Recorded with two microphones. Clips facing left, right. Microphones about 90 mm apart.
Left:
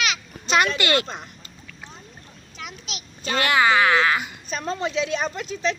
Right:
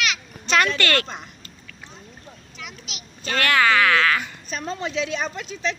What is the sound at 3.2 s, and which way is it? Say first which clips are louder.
Speech: even; 20° left (ahead or behind).